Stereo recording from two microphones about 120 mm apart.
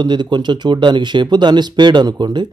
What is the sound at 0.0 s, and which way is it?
Speech, 40° right (ahead or behind).